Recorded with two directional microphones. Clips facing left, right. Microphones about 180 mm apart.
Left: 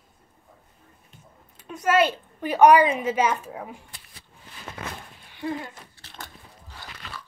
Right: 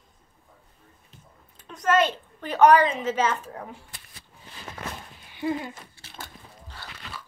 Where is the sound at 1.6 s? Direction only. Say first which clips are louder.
Left 1 dB; 10° left (ahead or behind).